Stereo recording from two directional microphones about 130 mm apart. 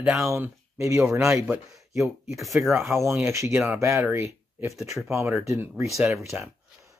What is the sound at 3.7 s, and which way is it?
Speech, 20° right (ahead or behind).